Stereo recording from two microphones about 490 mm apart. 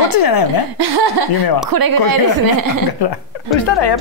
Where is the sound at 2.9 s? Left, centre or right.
Left.